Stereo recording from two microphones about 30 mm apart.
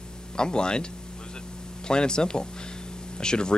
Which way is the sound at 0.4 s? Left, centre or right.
Left.